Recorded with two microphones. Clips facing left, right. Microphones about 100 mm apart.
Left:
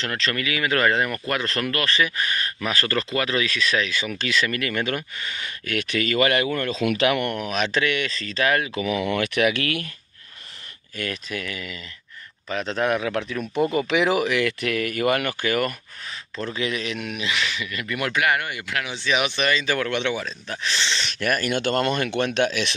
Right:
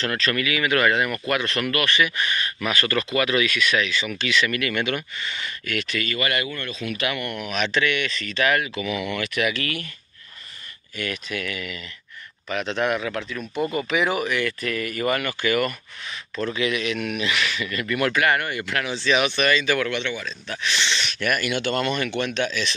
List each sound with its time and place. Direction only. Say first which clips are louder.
0.0 s speech: right 2 dB; 20° left (ahead or behind)
3.9 s speech: right 1 dB; 45° left (ahead or behind)
6.5 s speech: left 7 dB; 90° left
7.2 s speech: left 3 dB; 45° left (ahead or behind)
8.7 s speech: left 3 dB; 45° left (ahead or behind)
9.1 s speech: left 5 dB; 55° left (ahead or behind)
11.0 s speech: right 1 dB; 40° left (ahead or behind)
12.7 s speech: left 1 dB; 40° left (ahead or behind)
13.4 s speech: left 3 dB; 5° left (ahead or behind)
13.8 s speech: left 2 dB; 90° left; by 16.2 s 45° left (ahead or behind)
16.5 s speech: right 2 dB; 30° left (ahead or behind)
19.9 s speech: left 3 dB; 60° left (ahead or behind)
20.5 s speech: right 1 dB; 30° left (ahead or behind); by 22.8 s 60° left (ahead or behind)